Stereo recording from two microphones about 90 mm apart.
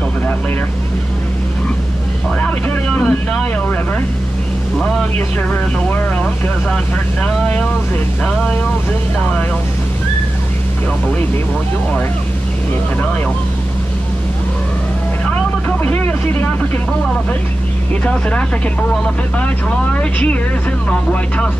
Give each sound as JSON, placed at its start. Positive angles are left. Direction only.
{"t": 2.4, "sound": "speech", "side_deg": 15}
{"t": 5.5, "sound": "speech", "side_deg": 20}
{"t": 7.2, "sound": "speech", "side_deg": 10}
{"t": 15.8, "sound": "speech", "side_deg": 20}
{"t": 19.3, "sound": "speech", "side_deg": 15}